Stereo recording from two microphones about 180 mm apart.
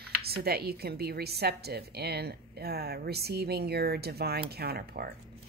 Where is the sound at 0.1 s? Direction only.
60° right (ahead or behind).